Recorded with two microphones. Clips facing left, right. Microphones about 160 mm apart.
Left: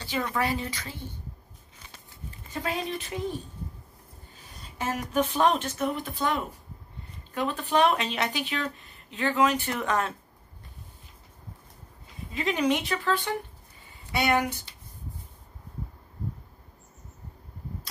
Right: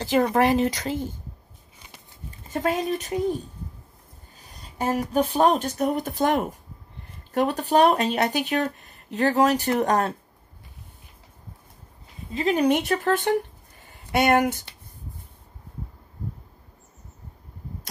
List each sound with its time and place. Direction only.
0.0 s speech: 45° right (ahead or behind)
0.8 s speech: 90° right
2.5 s speech: 45° right (ahead or behind)
4.6 s a sound: 35° right (ahead or behind)
5.1 s speech: 35° right (ahead or behind)
12.3 s speech: 30° right (ahead or behind)
12.6 s speech: 45° right (ahead or behind)